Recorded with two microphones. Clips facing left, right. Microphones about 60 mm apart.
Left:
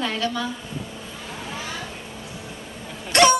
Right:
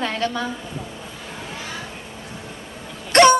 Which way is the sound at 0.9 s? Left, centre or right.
Centre.